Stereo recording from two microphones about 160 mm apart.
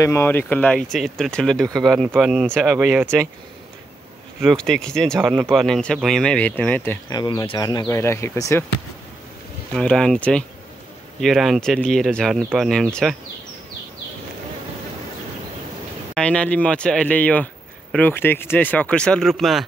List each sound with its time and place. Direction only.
0.0 s speech: 15° left (ahead or behind); by 3.1 s centre (ahead or behind)
4.4 s speech: centre (ahead or behind)
7.1 s speech: 25° left (ahead or behind)
9.7 s speech: 5° left (ahead or behind)
16.2 s speech: 5° left (ahead or behind)